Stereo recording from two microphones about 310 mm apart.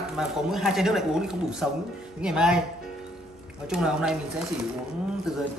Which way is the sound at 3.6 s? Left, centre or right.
Centre.